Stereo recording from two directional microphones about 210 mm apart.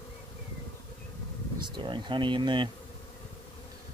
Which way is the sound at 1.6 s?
20° right (ahead or behind).